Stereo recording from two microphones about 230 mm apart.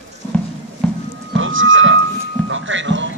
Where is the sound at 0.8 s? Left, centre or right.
Centre.